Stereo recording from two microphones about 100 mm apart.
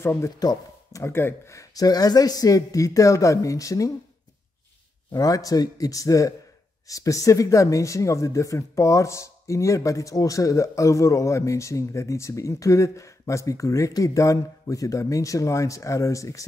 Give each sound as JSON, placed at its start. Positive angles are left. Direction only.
{"t": 0.0, "sound": "speech", "side_deg": 25}
{"t": 0.4, "sound": "speech", "side_deg": 40}
{"t": 1.0, "sound": "speech", "side_deg": 25}
{"t": 5.1, "sound": "speech", "side_deg": 35}